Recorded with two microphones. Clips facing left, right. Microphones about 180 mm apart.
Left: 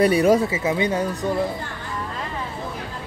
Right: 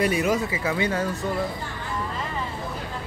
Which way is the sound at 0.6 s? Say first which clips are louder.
Left 3 dB; 20° left (ahead or behind).